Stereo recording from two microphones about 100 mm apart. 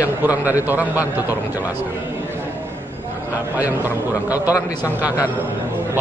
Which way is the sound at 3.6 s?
15° right (ahead or behind).